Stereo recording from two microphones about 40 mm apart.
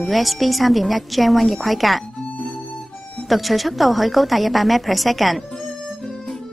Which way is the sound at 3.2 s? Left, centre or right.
Centre.